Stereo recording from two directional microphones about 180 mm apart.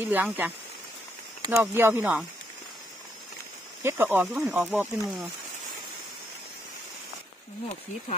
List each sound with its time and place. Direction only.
0.0 s speech: 10° right (ahead or behind)
3.8 s speech: 10° right (ahead or behind)